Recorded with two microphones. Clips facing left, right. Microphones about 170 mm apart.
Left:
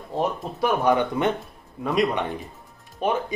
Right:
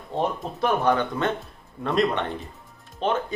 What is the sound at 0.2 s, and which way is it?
Speech, 10° left (ahead or behind).